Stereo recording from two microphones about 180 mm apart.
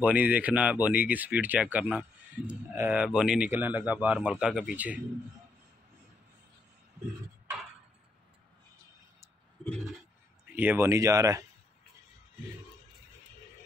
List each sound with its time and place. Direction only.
0.0 s speech: 10° right (ahead or behind)
9.7 s a sound: 5° left (ahead or behind)
10.5 s speech: 10° right (ahead or behind)